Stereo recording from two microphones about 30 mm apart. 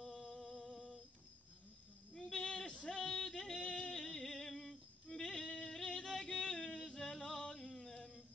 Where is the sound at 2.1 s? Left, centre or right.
Centre.